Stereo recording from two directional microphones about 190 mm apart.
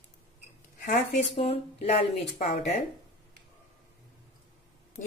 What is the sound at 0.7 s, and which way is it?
Speech, 35° left (ahead or behind).